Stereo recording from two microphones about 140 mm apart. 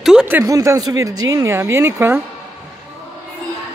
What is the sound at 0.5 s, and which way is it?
Speech, 25° right (ahead or behind).